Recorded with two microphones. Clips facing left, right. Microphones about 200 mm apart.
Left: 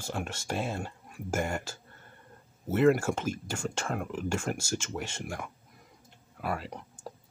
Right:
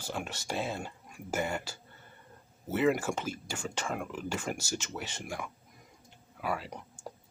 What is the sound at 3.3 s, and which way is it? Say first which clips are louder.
Speech: left 4 dB; 10° right (ahead or behind).